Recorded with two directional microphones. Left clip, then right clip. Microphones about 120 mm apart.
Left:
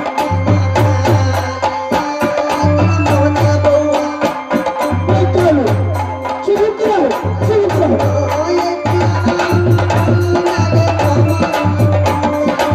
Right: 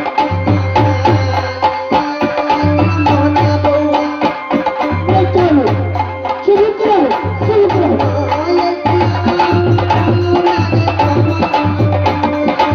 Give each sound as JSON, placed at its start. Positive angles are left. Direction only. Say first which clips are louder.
{"t": 0.2, "sound": "music", "louder": "right 3 dB", "side_deg": -20}